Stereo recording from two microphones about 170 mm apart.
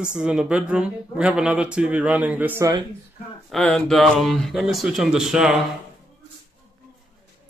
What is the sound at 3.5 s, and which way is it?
Speech, 5° left (ahead or behind).